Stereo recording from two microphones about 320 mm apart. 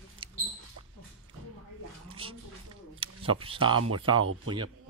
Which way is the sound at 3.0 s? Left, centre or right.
Centre.